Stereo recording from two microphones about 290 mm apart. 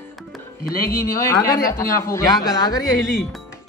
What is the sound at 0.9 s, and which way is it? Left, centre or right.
Speech, centre.